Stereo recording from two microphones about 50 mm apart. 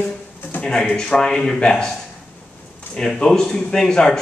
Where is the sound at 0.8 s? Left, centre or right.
Centre.